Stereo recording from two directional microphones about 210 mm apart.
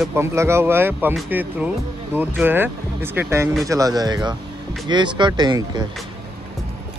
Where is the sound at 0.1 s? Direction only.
10° right (ahead or behind).